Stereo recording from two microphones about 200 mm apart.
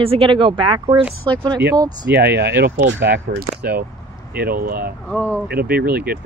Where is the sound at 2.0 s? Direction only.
55° right (ahead or behind).